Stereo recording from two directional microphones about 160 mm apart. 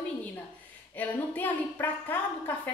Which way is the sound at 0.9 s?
10° left (ahead or behind).